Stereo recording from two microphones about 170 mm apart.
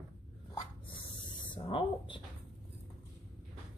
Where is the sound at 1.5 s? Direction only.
30° left (ahead or behind).